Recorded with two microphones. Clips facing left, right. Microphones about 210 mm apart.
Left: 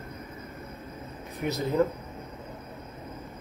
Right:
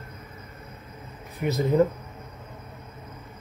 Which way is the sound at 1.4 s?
5° right (ahead or behind).